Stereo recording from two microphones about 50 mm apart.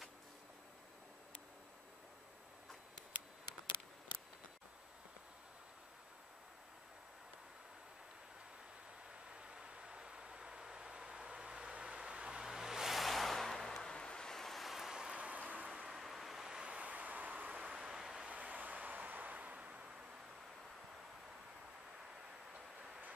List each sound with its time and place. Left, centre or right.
9.3 s vehicle: centre
15.0 s a sound: centre
15.9 s vehicle: centre
16.8 s vehicle: right
17.7 s vehicle: centre
18.2 s a sound: right